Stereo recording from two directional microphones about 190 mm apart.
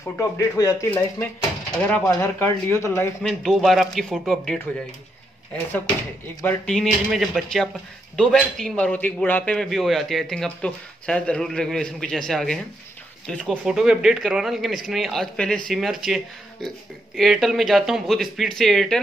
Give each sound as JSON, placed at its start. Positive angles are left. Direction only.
{"t": 0.2, "sound": "speech", "side_deg": 15}
{"t": 3.2, "sound": "a man's voice", "side_deg": 0}
{"t": 6.4, "sound": "a man's voice", "side_deg": 5}